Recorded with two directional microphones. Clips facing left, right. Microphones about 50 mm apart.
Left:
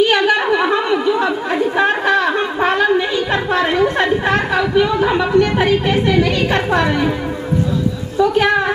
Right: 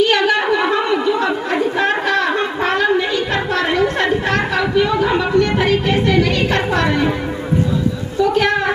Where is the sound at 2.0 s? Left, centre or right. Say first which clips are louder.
Left 2 dB; centre.